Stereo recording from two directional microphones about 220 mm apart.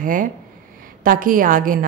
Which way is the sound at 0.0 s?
40° right (ahead or behind).